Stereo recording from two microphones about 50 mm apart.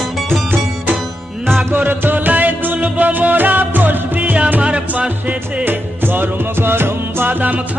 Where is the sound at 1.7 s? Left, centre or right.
Right.